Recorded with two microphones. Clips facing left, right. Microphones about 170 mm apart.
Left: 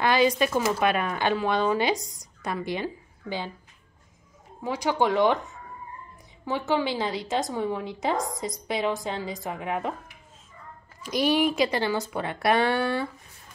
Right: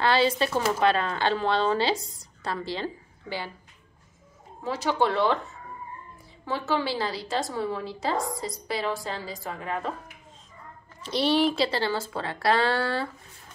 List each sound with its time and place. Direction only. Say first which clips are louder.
0.0 s speech: left 1 dB; 15° left (ahead or behind)
4.6 s a woman's voice: left 1 dB; 15° left (ahead or behind)
11.0 s speech: even; 10° left (ahead or behind)